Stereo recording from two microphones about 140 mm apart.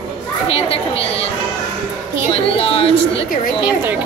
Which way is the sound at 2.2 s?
45° left (ahead or behind).